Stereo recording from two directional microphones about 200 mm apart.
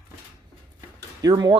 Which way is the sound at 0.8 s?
20° right (ahead or behind).